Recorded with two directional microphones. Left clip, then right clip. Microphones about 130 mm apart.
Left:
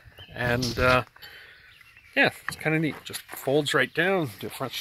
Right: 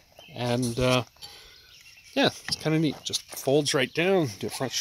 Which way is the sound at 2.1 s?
40° right (ahead or behind).